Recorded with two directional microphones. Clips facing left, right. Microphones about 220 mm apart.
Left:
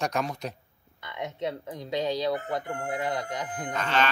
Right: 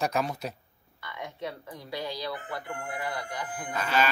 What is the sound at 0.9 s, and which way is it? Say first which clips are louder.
Speech: left 4 dB; 20° left (ahead or behind).